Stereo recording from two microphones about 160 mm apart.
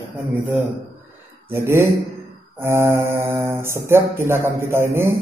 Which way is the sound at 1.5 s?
15° right (ahead or behind).